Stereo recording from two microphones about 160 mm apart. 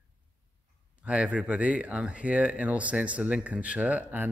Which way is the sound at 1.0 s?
5° right (ahead or behind).